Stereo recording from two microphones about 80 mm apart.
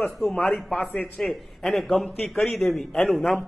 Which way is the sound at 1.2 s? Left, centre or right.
Centre.